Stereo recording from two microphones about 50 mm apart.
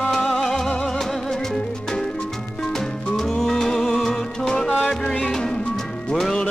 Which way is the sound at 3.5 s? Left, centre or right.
Centre.